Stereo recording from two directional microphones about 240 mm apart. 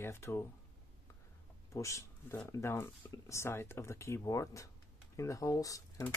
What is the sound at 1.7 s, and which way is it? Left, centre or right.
Speech, centre.